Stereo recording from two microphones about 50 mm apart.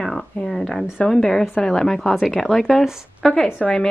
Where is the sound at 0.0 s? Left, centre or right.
Centre.